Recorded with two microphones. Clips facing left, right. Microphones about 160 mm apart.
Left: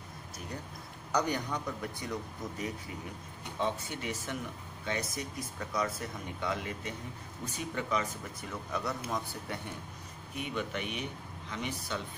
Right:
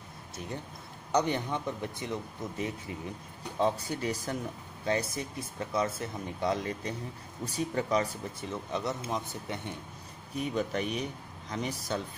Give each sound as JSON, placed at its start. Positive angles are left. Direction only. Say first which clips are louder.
{"t": 1.1, "sound": "speech", "louder": "right 3 dB", "side_deg": -25}
{"t": 3.5, "sound": "speech", "louder": "right 5 dB", "side_deg": -35}
{"t": 10.3, "sound": "speech", "louder": "right 5 dB", "side_deg": -35}